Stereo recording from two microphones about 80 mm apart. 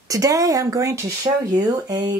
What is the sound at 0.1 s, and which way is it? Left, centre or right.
Speech, right.